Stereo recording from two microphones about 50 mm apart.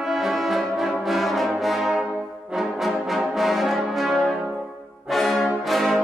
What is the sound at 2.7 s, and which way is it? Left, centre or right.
Brass instrument, centre.